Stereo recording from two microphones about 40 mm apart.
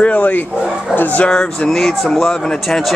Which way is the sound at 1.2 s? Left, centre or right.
Centre.